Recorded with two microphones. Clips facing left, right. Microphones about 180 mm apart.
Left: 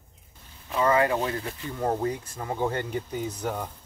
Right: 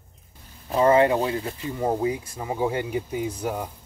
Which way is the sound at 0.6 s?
30° right (ahead or behind).